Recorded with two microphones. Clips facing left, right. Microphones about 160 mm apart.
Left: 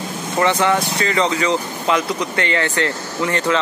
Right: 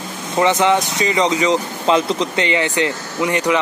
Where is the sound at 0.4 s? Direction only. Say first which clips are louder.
Right 2 dB; 20° right (ahead or behind).